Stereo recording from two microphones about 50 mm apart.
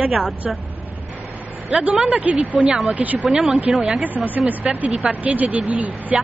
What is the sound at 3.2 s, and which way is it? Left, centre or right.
Speech, centre.